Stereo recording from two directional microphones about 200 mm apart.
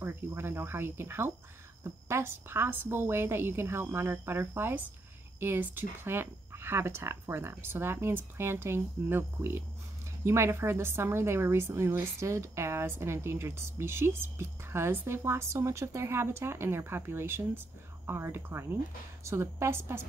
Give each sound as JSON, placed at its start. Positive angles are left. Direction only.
{"t": 0.0, "sound": "a woman's voice", "side_deg": -10}